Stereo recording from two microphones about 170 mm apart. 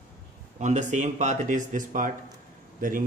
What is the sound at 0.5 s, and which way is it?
Speech, 45° right (ahead or behind).